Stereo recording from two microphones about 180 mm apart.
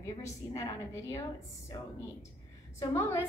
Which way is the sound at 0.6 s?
15° left (ahead or behind).